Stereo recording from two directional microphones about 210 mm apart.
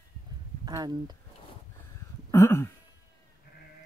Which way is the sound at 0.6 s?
20° right (ahead or behind).